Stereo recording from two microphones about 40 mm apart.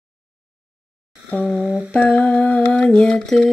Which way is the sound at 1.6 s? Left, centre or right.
Right.